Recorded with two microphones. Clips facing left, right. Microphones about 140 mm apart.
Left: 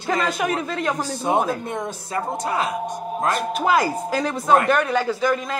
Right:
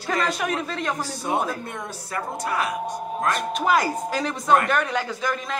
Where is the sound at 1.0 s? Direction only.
20° left (ahead or behind).